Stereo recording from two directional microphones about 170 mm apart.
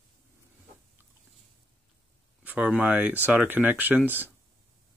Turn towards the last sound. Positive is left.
turn(degrees=-10)  # may be behind; listen again after turning